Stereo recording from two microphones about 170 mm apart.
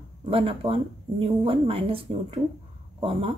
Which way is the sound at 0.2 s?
35° right (ahead or behind).